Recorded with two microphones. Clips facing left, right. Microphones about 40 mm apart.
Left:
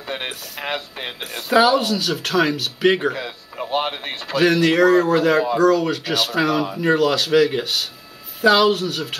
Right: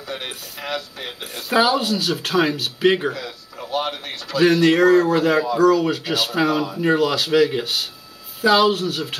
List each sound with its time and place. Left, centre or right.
0.0 s a sound: left
0.6 s speech: left
1.8 s speech: centre
3.2 s a man's voice: left
4.4 s speech: centre